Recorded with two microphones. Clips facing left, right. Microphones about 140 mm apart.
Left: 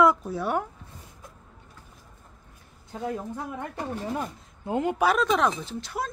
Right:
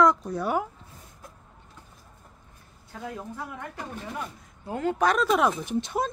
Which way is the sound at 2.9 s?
20° left (ahead or behind).